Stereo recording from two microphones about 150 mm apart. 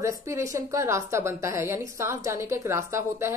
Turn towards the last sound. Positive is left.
turn(degrees=-15)  # may be behind; listen again after turning